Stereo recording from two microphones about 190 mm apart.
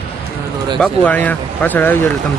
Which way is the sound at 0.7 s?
5° left (ahead or behind).